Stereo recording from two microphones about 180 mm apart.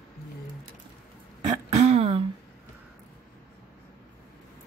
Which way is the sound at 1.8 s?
35° right (ahead or behind).